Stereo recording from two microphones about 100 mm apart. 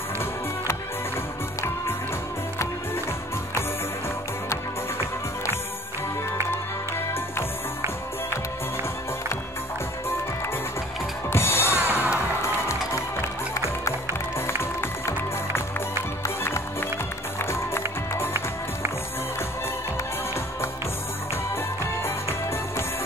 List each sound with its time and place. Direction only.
11.2 s music: 25° left (ahead or behind)
11.9 s music: 15° right (ahead or behind)
14.6 s music: 25° left (ahead or behind)